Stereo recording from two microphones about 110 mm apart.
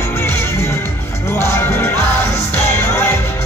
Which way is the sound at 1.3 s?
25° left (ahead or behind).